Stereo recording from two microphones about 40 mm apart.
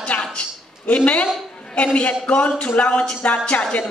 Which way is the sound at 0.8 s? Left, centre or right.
Left.